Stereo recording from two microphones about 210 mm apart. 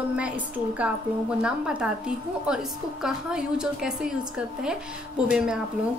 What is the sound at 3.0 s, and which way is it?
A woman's voice, 5° right (ahead or behind).